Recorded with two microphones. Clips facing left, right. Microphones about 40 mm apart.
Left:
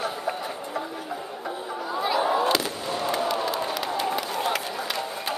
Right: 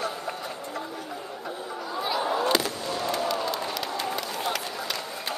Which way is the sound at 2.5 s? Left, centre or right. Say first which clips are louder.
Even; centre.